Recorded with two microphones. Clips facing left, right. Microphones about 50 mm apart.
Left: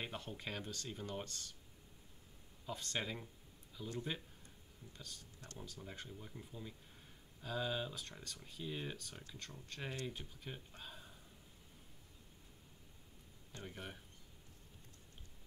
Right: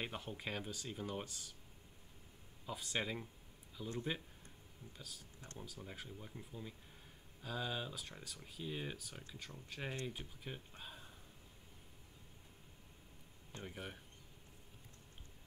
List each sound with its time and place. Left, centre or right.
0.0 s speech: centre
2.6 s speech: centre
5.4 s speech: centre
5.8 s speech: centre
13.7 s speech: centre